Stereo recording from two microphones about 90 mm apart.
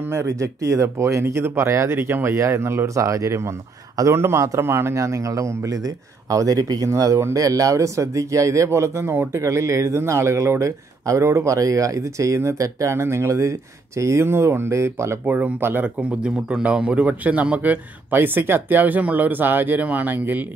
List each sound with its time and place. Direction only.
0.0 s speech: 30° right (ahead or behind)
15.2 s a man's voice: 20° right (ahead or behind)